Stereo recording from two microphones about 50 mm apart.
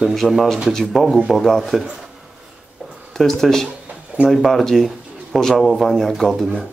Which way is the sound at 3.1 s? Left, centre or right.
Centre.